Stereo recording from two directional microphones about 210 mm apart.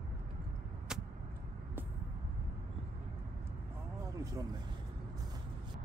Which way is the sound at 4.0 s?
15° right (ahead or behind).